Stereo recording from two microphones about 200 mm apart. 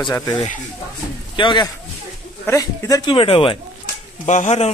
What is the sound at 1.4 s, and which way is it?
Speech, 25° left (ahead or behind).